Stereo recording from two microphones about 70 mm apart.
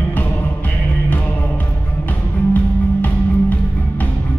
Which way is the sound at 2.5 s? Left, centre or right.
Left.